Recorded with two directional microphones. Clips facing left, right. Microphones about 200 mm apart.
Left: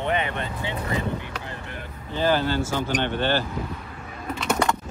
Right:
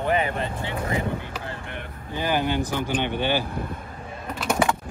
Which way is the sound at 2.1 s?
15° right (ahead or behind).